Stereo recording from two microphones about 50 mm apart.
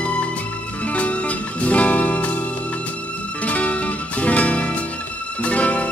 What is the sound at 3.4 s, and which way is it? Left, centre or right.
Music, left.